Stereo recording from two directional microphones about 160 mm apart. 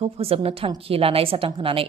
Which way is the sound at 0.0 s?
35° right (ahead or behind).